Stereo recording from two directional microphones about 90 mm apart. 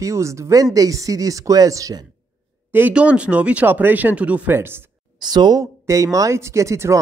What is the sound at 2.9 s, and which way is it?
Speech, 10° right (ahead or behind).